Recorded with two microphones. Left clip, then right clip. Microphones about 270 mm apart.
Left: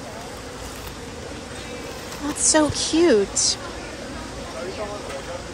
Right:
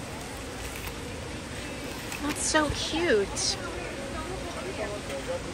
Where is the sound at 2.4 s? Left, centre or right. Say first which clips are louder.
Left 7 dB; centre.